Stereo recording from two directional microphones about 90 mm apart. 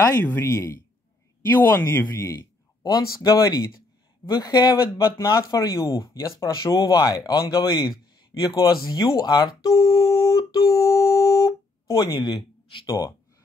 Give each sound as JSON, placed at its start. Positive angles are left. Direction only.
{"t": 0.4, "sound": "speech", "side_deg": 30}
{"t": 2.2, "sound": "speech", "side_deg": 45}
{"t": 4.9, "sound": "speech", "side_deg": 30}
{"t": 9.8, "sound": "speech", "side_deg": 40}
{"t": 12.8, "sound": "speech", "side_deg": 40}